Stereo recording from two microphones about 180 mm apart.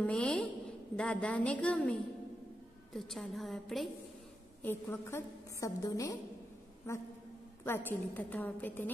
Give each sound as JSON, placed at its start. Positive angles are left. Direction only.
{"t": 0.0, "sound": "a woman's voice", "side_deg": 5}
{"t": 4.6, "sound": "a woman's voice", "side_deg": 15}
{"t": 7.6, "sound": "a woman's voice", "side_deg": 15}